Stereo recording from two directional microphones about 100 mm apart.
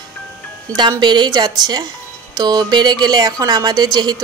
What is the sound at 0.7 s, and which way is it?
A woman's voice, 45° right (ahead or behind).